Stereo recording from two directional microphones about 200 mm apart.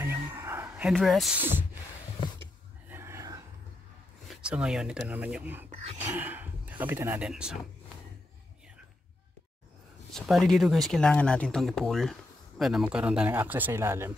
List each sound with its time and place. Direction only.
0.0 s a sound: 15° right (ahead or behind)
2.9 s a sound: 15° right (ahead or behind)
4.5 s speech: 5° right (ahead or behind)
5.7 s speech: 30° right (ahead or behind)
6.0 s speech: 10° right (ahead or behind)
10.1 s speech: centre (ahead or behind)